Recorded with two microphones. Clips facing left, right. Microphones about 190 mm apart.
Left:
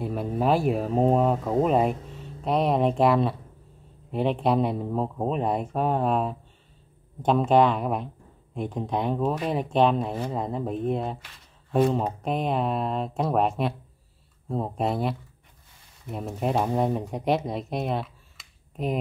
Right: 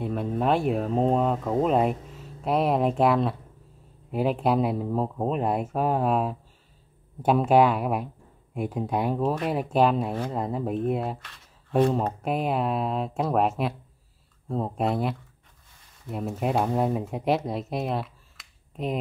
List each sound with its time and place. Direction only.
0.0 s speech: centre (ahead or behind)
11.2 s a sound: centre (ahead or behind)
12.2 s speech: 5° right (ahead or behind)